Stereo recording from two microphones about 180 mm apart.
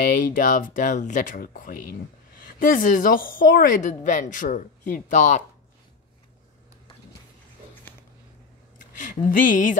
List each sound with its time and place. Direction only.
0.1 s a woman's voice: 45° left (ahead or behind)
8.7 s speech: 50° left (ahead or behind)